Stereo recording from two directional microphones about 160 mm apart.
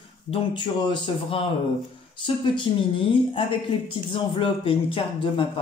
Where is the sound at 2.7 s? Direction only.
30° left (ahead or behind).